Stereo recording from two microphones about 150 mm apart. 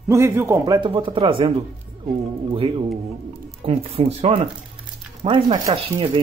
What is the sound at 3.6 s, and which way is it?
Speech, 40° right (ahead or behind).